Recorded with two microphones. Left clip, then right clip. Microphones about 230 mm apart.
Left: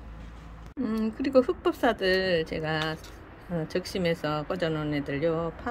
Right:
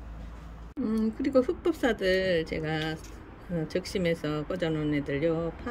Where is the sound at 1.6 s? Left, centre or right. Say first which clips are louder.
Left 2 dB; left.